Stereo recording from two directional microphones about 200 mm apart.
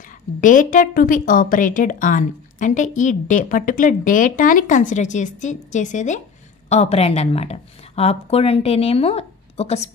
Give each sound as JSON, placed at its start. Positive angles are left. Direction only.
{"t": 0.4, "sound": "a woman's voice", "side_deg": 40}